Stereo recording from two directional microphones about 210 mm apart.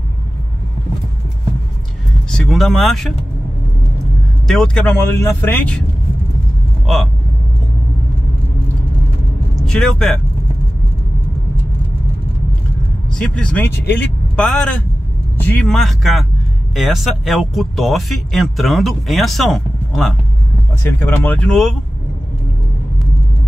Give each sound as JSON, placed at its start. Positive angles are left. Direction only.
{"t": 2.3, "sound": "speech", "side_deg": 0}
{"t": 4.5, "sound": "speech", "side_deg": 5}
{"t": 9.6, "sound": "speech", "side_deg": 0}
{"t": 13.1, "sound": "speech", "side_deg": 5}